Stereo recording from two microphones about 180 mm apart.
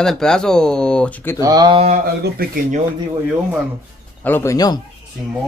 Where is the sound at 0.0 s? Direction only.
5° left (ahead or behind).